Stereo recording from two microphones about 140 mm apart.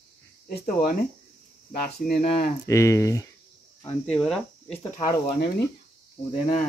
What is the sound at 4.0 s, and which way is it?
Speech, 5° left (ahead or behind).